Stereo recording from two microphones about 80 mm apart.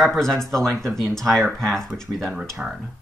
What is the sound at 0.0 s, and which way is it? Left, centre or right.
Speech, centre.